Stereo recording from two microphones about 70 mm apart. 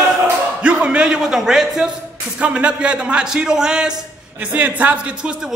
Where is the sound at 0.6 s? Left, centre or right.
Centre.